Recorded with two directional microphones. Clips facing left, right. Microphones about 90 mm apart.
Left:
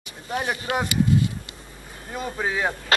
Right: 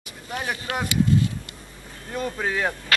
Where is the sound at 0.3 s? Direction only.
20° left (ahead or behind).